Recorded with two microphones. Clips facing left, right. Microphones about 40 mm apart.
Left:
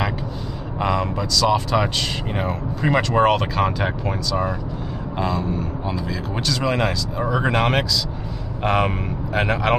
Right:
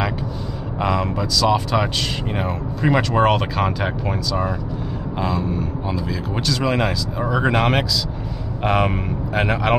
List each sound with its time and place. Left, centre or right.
0.7 s speech: centre